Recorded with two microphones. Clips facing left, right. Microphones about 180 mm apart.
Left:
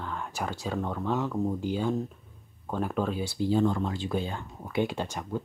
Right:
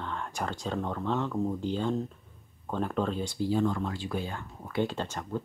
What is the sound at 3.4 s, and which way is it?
Speech, 25° left (ahead or behind).